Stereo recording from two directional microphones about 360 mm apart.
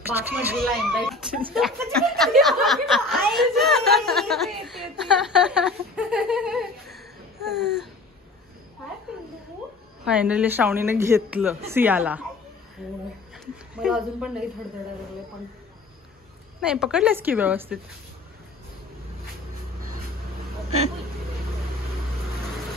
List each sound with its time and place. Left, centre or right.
0.3 s speech: centre
7.6 s a sound: centre
10.0 s speech: centre
16.6 s speech: centre